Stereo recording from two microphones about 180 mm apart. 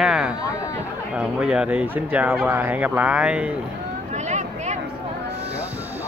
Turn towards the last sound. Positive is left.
turn(degrees=-40)  # may be behind; listen again after turning